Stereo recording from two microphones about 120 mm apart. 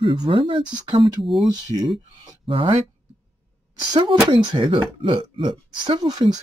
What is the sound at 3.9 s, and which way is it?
Speech, 40° right (ahead or behind).